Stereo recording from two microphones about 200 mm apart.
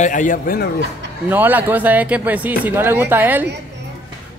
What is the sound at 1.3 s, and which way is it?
Speech, 10° right (ahead or behind).